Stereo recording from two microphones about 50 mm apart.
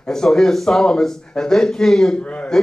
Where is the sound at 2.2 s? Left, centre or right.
Left.